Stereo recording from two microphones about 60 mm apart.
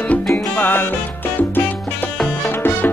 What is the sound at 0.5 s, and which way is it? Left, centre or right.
Music, left.